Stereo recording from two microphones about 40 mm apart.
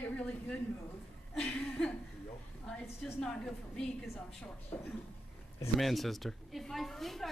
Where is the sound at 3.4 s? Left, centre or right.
Centre.